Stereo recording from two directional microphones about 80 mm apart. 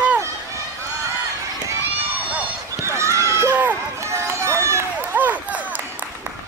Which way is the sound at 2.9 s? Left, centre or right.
Right.